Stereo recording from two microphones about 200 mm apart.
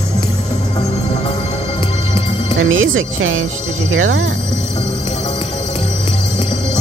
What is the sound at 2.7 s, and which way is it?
Speech, 85° right.